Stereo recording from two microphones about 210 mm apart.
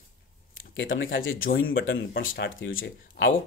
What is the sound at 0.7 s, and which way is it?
Speech, 70° left (ahead or behind).